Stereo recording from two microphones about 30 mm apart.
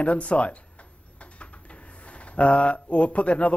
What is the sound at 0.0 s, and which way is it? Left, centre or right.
A man's voice, left.